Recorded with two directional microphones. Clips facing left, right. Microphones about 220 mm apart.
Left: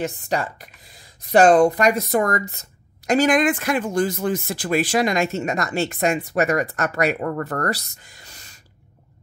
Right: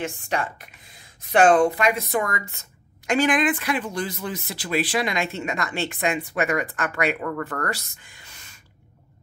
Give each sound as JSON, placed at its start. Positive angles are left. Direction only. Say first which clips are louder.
{"t": 0.0, "sound": "speech", "louder": "left 3 dB", "side_deg": 35}